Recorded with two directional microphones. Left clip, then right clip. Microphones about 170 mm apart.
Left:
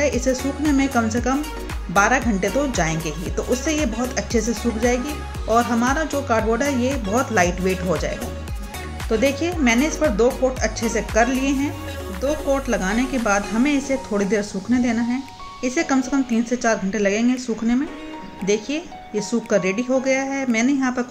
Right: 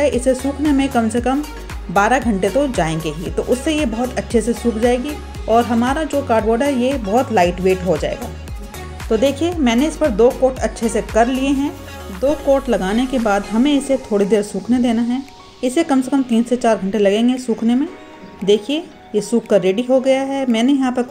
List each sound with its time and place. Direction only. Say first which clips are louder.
0.0 s a woman's voice: right 5 dB; 20° right (ahead or behind)
9.1 s a woman's voice: right 4 dB; 20° right (ahead or behind)